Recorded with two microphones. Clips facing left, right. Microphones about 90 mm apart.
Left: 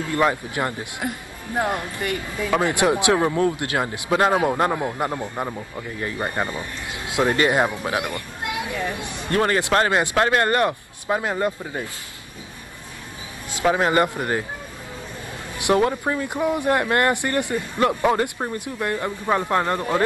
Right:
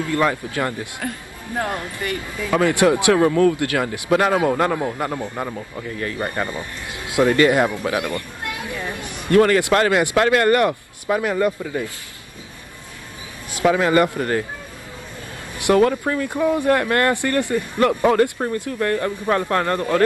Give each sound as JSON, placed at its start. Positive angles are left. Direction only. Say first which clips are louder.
{"t": 0.1, "sound": "speech", "louder": "even", "side_deg": 20}
{"t": 13.6, "sound": "speech", "louder": "right 3 dB", "side_deg": 25}
{"t": 15.6, "sound": "speech", "louder": "right 3 dB", "side_deg": 20}